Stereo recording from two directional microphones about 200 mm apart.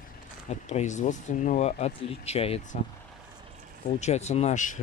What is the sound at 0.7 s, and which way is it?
Speech, 35° left (ahead or behind).